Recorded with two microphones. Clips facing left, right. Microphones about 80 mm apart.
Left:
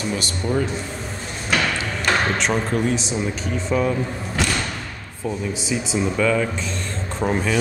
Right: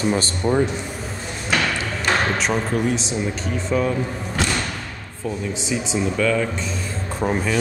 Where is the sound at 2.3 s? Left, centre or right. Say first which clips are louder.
Even; centre.